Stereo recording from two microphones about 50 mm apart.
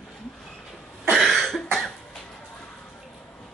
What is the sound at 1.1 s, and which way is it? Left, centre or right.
Cough, centre.